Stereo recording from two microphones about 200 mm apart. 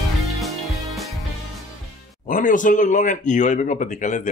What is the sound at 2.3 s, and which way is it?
Speech, 40° left (ahead or behind).